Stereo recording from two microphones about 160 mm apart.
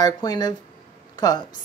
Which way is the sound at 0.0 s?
25° left (ahead or behind).